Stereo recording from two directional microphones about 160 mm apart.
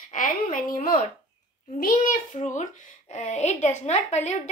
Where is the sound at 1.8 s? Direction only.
60° left (ahead or behind).